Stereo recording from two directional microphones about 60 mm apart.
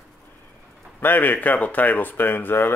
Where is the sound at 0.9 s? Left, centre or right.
Left.